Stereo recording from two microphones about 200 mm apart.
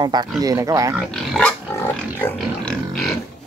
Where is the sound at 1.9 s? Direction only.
10° left (ahead or behind).